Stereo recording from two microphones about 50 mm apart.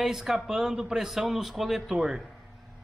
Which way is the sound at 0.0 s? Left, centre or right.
Centre.